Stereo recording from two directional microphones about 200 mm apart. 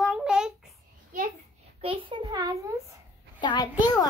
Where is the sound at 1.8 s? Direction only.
25° right (ahead or behind).